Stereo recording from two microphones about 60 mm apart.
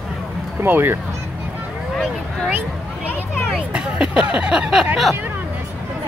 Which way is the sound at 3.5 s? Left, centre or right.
Centre.